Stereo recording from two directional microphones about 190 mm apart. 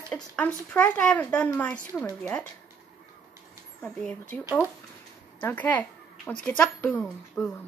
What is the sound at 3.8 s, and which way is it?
Speech, 5° left (ahead or behind).